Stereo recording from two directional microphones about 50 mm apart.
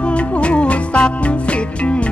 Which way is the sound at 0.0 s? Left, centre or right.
Left.